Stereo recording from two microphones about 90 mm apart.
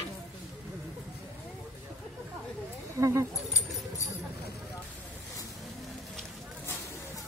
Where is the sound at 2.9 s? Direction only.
35° right (ahead or behind).